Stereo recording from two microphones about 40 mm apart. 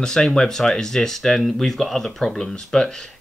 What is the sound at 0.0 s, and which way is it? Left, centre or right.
Speech, centre.